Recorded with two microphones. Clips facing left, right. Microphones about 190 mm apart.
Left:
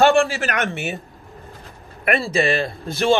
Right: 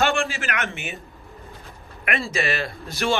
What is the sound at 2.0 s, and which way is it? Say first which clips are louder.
Speech: left 6 dB; 35° left (ahead or behind).